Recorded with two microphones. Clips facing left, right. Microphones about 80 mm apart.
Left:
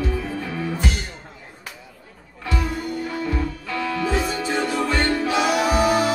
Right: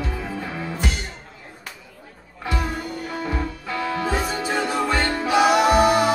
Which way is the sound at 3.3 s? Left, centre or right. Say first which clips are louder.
Left 1 dB; right.